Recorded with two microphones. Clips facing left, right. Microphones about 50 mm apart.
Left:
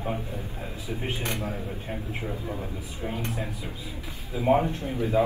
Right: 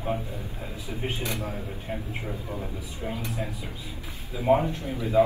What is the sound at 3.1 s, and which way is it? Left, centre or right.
Speech, left.